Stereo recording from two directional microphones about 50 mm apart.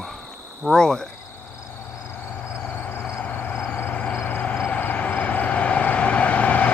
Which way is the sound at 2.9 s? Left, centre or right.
Left.